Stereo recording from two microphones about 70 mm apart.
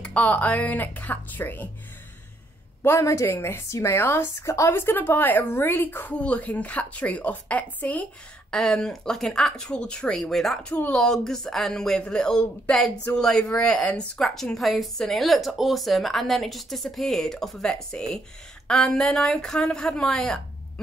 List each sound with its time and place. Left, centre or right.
0.0 s a woman's voice: left
2.8 s a woman's voice: left; by 20.3 s centre